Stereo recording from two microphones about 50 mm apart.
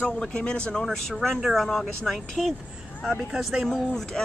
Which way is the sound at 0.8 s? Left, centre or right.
Centre.